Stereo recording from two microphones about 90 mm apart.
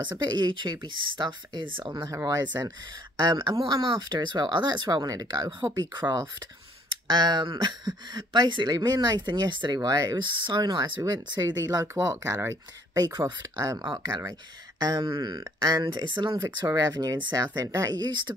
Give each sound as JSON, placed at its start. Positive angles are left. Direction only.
{"t": 0.0, "sound": "speech", "side_deg": -60}
{"t": 2.2, "sound": "speech", "side_deg": -45}
{"t": 3.6, "sound": "speech", "side_deg": -65}
{"t": 13.2, "sound": "speech", "side_deg": -40}
{"t": 13.8, "sound": "speech", "side_deg": -55}
{"t": 16.5, "sound": "speech", "side_deg": -45}
{"t": 17.9, "sound": "speech", "side_deg": -55}